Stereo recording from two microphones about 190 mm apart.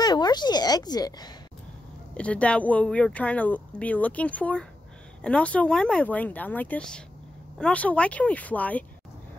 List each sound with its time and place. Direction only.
0.0 s speech: 20° left (ahead or behind)
2.1 s speech: 5° left (ahead or behind)